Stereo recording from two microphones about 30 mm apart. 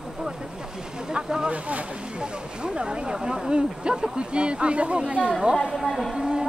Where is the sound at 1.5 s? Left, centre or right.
Right.